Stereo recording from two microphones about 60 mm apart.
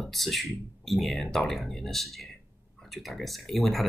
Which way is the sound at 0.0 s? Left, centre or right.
Centre.